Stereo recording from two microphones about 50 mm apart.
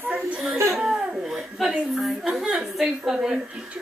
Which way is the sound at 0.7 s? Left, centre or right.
Centre.